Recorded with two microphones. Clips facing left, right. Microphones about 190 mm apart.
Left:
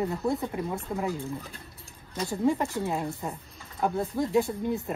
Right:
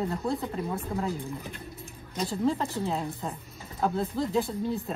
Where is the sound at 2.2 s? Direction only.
15° left (ahead or behind).